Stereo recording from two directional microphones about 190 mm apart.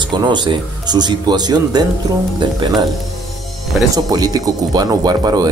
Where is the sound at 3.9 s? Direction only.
20° right (ahead or behind).